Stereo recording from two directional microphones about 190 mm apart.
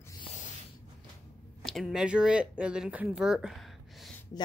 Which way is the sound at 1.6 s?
Centre (ahead or behind).